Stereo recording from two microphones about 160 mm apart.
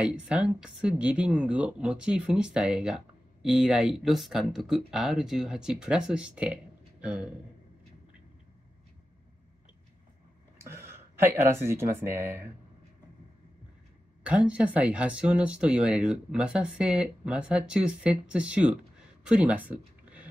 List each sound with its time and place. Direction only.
0.0 s speech: 5° right (ahead or behind)
10.6 s speech: 15° right (ahead or behind)
14.2 s speech: 5° right (ahead or behind)